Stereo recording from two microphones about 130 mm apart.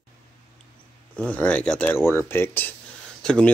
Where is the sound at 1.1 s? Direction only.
10° left (ahead or behind).